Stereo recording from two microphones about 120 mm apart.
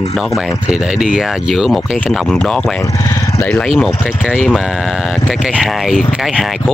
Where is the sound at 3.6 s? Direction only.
Centre (ahead or behind).